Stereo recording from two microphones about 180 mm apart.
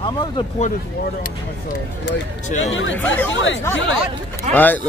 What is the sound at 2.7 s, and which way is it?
Speech, 90° left.